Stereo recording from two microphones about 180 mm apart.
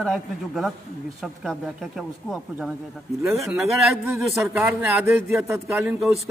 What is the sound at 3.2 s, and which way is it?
Speech, 15° right (ahead or behind).